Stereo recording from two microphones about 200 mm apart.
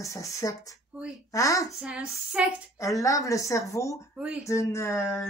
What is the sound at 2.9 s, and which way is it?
Speech, 15° left (ahead or behind).